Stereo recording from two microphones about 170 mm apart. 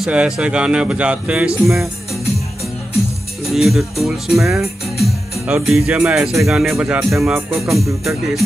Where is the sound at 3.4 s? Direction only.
Centre (ahead or behind).